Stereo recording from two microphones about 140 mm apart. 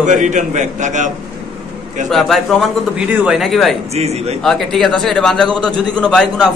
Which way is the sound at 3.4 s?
Centre (ahead or behind).